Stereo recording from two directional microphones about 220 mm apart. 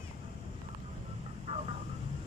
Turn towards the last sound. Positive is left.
turn(degrees=-25)  # may be behind; listen again after turning